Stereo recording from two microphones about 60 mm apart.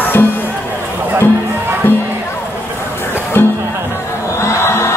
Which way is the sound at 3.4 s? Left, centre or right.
Left.